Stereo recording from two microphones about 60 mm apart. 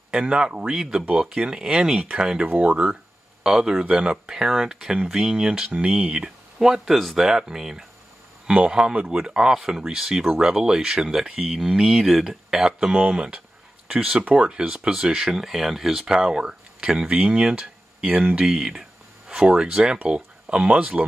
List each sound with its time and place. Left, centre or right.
0.1 s speech: centre
2.4 s speech: right
3.4 s speech: centre
11.1 s speech: centre
14.2 s speech: right